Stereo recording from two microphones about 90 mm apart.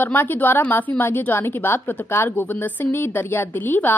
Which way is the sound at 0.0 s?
25° left (ahead or behind).